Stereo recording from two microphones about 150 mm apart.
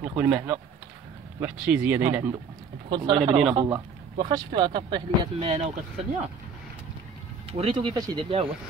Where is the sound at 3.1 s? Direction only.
30° right (ahead or behind).